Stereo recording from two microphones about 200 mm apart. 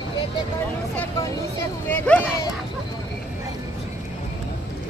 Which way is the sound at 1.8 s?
5° left (ahead or behind).